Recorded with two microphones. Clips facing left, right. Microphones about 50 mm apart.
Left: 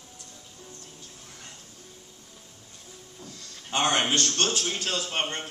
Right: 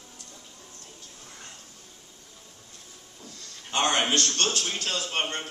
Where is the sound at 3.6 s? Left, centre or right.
Centre.